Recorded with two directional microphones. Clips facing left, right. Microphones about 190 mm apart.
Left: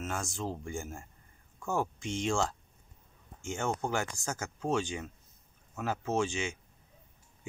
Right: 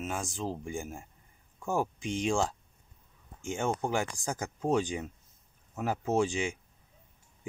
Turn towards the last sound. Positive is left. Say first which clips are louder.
# right 3 dB
turn(degrees=-35)  # may be behind; listen again after turning